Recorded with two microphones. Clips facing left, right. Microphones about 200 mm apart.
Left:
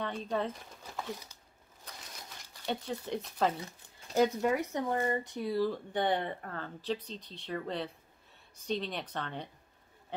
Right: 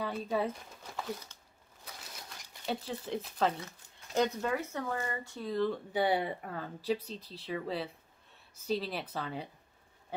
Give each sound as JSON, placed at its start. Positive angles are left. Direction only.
{"t": 0.0, "sound": "speech", "side_deg": -5}
{"t": 1.9, "sound": "crumpling", "side_deg": -5}
{"t": 4.1, "sound": "speech", "side_deg": 5}
{"t": 4.5, "sound": "speech", "side_deg": 20}
{"t": 4.9, "sound": "speech", "side_deg": 30}
{"t": 5.2, "sound": "speech", "side_deg": 15}
{"t": 5.7, "sound": "speech", "side_deg": -5}